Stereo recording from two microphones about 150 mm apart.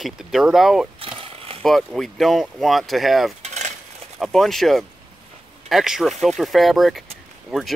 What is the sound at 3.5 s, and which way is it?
Cutlery, 50° right (ahead or behind).